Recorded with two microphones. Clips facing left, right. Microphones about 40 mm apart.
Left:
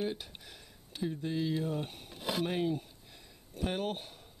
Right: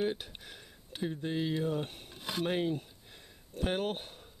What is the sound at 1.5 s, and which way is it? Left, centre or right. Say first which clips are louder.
Speech: right 1 dB; centre.